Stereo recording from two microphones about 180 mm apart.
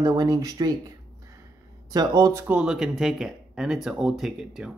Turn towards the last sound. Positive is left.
turn(degrees=-5)  # may be behind; listen again after turning